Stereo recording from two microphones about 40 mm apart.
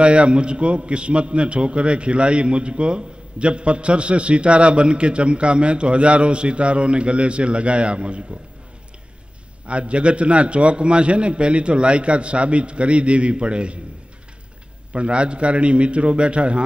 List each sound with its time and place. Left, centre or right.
0.0 s a man's voice: right
9.7 s a man's voice: right
14.9 s a man's voice: right